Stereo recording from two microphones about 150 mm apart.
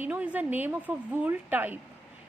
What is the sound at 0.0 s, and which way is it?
A woman's voice, 10° right (ahead or behind).